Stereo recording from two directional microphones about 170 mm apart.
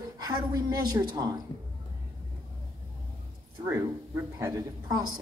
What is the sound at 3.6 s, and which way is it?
Speech, 15° right (ahead or behind).